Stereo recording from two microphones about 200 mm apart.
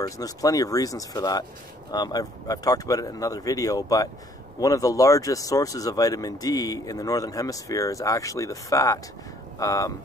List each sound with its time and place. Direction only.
0.0 s speech: 15° left (ahead or behind)